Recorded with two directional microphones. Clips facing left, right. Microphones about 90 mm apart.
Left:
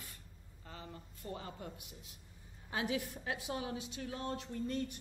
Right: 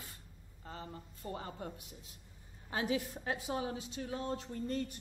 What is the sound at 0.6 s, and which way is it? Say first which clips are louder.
A man's voice: right 3 dB; 35° right (ahead or behind).